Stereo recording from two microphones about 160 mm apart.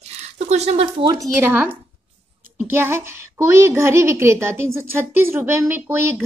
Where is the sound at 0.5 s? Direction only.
40° right (ahead or behind).